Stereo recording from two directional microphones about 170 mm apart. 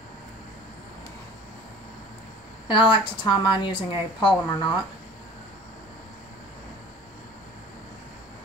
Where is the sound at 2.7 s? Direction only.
30° left (ahead or behind).